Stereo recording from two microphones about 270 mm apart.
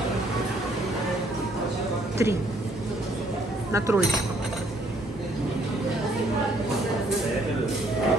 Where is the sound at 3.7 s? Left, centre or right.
Centre.